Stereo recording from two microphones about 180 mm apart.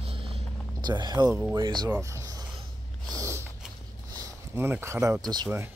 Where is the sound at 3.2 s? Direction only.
15° right (ahead or behind).